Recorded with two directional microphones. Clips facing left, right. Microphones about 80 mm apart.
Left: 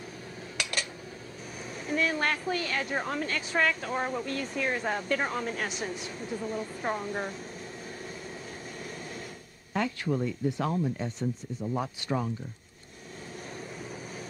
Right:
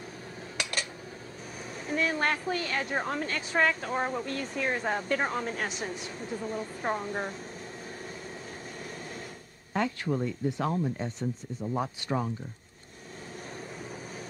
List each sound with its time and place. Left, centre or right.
0.6 s dishes: right
1.9 s a woman's voice: right
9.8 s speech: right
11.6 s speech: right
12.0 s a woman's voice: right